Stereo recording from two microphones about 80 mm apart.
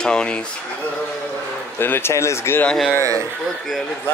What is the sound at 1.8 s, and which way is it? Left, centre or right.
Speech, left.